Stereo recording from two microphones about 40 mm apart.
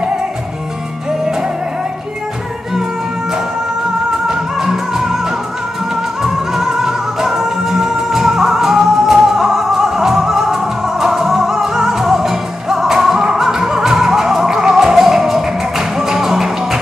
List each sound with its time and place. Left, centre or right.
4.3 s music: centre
6.2 s music: centre